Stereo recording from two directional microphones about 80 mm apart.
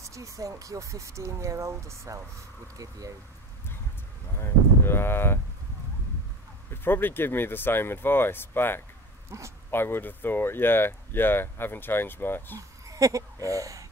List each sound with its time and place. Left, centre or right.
0.0 s speech: right
4.4 s speech: left
6.7 s speech: left
9.3 s speech: right
9.7 s speech: left
12.5 s speech: right